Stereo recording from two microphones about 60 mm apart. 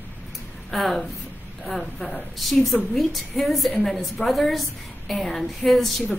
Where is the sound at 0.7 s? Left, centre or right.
Centre.